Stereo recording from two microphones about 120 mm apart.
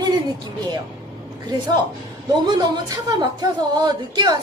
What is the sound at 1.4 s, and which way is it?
Speech, 35° right (ahead or behind).